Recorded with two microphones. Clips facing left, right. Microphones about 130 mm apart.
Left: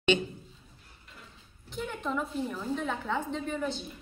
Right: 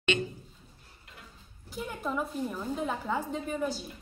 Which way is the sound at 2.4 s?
10° right (ahead or behind).